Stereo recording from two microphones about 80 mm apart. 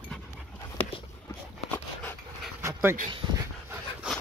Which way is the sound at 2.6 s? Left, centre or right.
Right.